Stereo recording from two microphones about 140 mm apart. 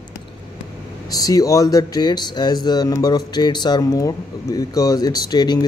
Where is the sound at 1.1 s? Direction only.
25° left (ahead or behind).